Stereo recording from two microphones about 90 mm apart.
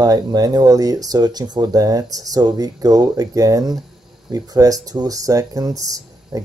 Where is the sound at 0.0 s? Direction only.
45° right (ahead or behind).